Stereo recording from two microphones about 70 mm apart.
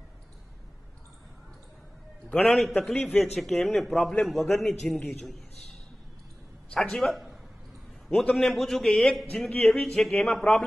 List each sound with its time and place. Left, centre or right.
2.2 s a sound: left
2.5 s a man's voice: centre
6.7 s a man's voice: centre